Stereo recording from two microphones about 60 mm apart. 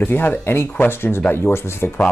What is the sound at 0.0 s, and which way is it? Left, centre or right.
Speech, left.